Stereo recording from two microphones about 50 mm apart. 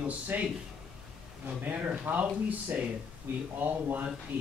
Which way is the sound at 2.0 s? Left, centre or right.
Right.